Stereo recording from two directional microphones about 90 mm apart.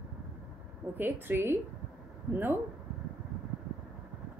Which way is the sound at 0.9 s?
25° right (ahead or behind).